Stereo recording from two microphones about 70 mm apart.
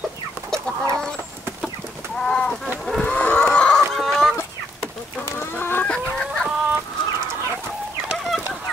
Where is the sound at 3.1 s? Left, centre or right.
Left.